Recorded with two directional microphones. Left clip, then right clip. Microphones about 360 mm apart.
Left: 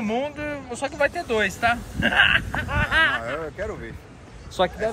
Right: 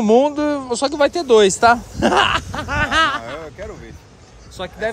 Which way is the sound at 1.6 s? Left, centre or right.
Right.